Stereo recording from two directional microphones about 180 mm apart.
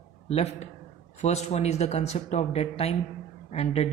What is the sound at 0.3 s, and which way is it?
A man's voice, 35° left (ahead or behind).